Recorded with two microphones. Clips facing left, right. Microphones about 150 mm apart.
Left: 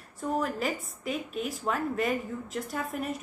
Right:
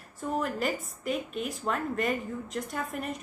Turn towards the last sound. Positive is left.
turn(degrees=0)  # may be behind; listen again after turning